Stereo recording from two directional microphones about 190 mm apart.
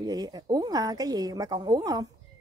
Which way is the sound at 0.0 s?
20° right (ahead or behind).